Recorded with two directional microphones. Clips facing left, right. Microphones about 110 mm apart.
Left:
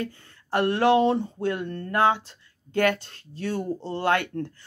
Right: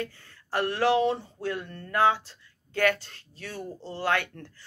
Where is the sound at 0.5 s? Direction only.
25° left (ahead or behind).